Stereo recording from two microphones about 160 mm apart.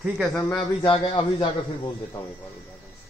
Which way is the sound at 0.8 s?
35° left (ahead or behind).